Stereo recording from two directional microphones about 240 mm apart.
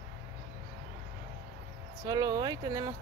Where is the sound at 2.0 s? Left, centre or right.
Centre.